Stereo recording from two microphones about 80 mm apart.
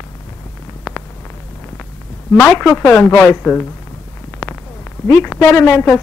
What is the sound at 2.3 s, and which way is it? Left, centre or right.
Speech, left.